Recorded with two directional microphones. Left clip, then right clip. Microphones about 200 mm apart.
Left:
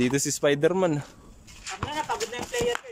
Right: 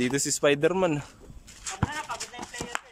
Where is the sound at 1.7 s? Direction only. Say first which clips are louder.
Left 1 dB; 35° right (ahead or behind).